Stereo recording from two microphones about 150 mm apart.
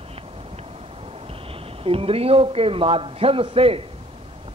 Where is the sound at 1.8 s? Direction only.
40° right (ahead or behind).